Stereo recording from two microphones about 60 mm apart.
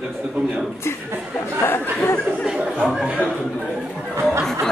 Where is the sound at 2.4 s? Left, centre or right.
Centre.